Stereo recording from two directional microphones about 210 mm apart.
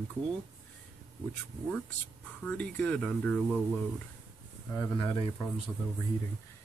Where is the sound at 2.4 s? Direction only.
5° left (ahead or behind).